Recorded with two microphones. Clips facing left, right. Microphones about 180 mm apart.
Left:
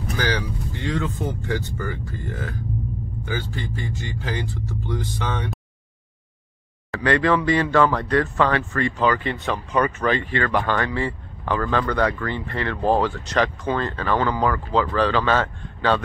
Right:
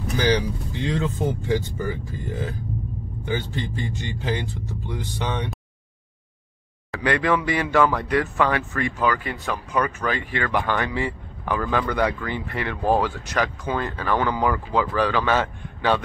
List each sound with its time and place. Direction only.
0.2 s a sound: 15° right (ahead or behind)
1.1 s speech: 15° right (ahead or behind)
6.9 s speech: 15° right (ahead or behind)